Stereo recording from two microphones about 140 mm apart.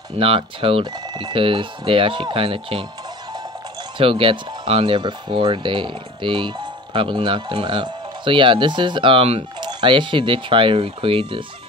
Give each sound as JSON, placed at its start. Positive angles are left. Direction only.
{"t": 0.2, "sound": "speech", "side_deg": -40}
{"t": 4.0, "sound": "speech", "side_deg": -40}